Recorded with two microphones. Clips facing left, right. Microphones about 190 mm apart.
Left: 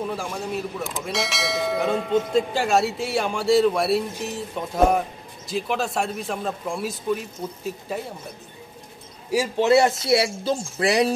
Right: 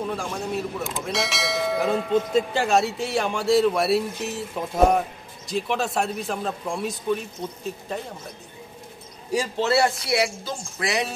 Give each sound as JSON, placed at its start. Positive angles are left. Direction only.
{"t": 0.1, "sound": "speech", "side_deg": 5}
{"t": 9.3, "sound": "speech", "side_deg": 10}